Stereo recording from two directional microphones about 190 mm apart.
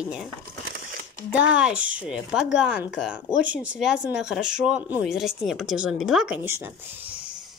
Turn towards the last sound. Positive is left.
turn(degrees=-5)  # may be behind; listen again after turning